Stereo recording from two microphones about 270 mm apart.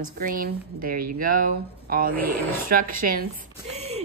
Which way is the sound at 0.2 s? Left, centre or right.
Right.